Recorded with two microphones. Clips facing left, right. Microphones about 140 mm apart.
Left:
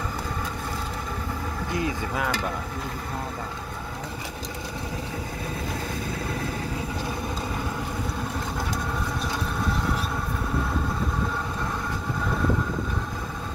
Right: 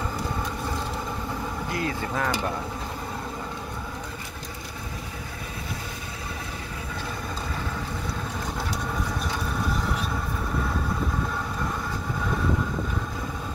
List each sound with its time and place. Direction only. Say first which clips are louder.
1.7 s speech: left 2 dB; 20° left (ahead or behind)